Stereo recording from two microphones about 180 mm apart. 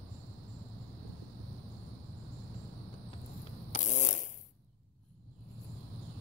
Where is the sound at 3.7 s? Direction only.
40° left (ahead or behind).